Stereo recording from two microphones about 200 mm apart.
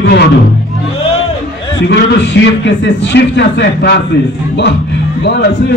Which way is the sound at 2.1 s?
60° left (ahead or behind).